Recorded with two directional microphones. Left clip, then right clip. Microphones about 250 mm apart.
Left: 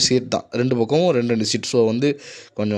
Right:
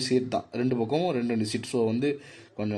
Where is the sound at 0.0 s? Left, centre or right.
Left.